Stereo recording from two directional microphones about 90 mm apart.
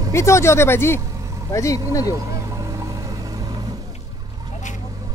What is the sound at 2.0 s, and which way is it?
Vehicle, 35° right (ahead or behind).